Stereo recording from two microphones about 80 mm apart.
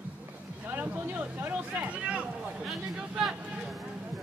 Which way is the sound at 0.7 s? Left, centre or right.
Right.